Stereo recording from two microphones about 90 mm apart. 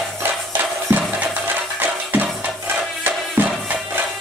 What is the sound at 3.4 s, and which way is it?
Music, 20° right (ahead or behind).